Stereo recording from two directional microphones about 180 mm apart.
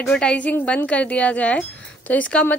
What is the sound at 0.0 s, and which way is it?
Speech, 5° left (ahead or behind).